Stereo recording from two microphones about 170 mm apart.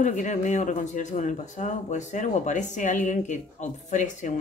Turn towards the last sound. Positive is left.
turn(degrees=45)  # may be behind; listen again after turning